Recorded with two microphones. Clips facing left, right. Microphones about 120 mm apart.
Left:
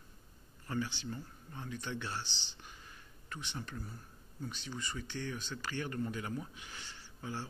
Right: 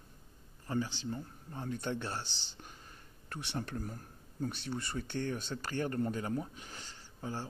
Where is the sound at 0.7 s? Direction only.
40° right (ahead or behind).